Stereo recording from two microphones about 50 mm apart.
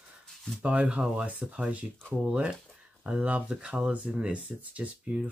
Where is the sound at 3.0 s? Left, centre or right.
Centre.